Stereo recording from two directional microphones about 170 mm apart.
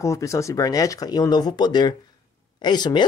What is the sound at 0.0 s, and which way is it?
Speech, 20° left (ahead or behind).